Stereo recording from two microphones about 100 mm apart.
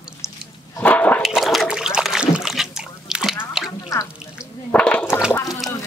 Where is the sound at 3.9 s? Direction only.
35° left (ahead or behind).